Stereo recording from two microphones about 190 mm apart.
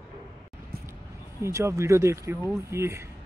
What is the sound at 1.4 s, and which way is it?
Speech, 15° right (ahead or behind).